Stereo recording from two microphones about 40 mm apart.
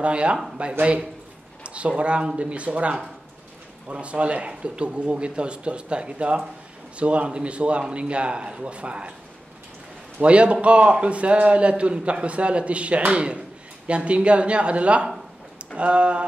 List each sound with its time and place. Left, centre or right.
0.0 s a man's voice: right
10.2 s a man's voice: right